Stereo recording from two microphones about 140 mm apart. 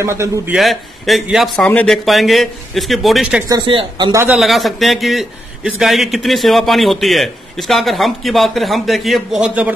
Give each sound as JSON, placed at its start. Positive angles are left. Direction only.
{"t": 0.0, "sound": "a man's voice", "side_deg": -20}
{"t": 0.6, "sound": "a man's voice", "side_deg": 0}
{"t": 1.7, "sound": "speech", "side_deg": 10}
{"t": 2.0, "sound": "a man's voice", "side_deg": 0}
{"t": 3.4, "sound": "speech", "side_deg": -35}
{"t": 4.1, "sound": "a man's voice", "side_deg": -15}
{"t": 4.4, "sound": "a man's voice", "side_deg": 0}